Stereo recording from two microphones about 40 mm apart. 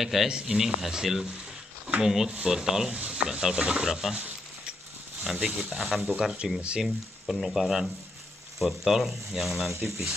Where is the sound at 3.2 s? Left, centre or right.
Centre.